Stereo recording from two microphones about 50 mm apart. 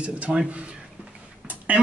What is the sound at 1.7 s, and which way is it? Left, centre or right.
Speech, right.